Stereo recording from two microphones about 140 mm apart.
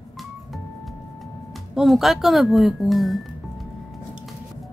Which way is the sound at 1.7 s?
Centre (ahead or behind).